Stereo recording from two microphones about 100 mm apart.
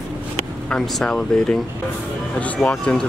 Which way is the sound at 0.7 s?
5° left (ahead or behind).